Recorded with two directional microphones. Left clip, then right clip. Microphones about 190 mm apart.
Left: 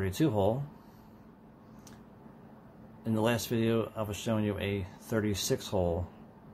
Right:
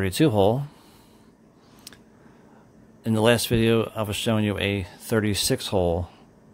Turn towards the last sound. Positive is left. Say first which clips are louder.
# right 8 dB
turn(degrees=-50)  # may be behind; listen again after turning